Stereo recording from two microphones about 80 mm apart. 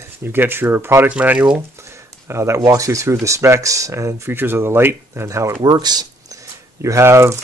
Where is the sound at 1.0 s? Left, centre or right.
Centre.